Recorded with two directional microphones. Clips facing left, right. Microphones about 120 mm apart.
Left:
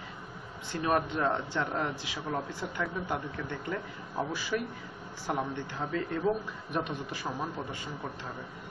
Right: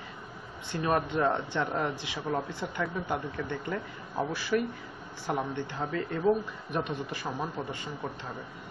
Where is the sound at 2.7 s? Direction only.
10° right (ahead or behind).